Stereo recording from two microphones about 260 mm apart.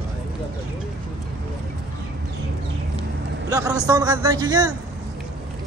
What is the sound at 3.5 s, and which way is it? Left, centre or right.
A man's voice, centre.